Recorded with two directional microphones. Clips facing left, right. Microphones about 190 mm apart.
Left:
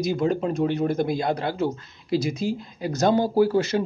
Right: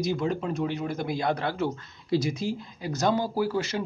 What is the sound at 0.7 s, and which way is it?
Speech, 50° left (ahead or behind).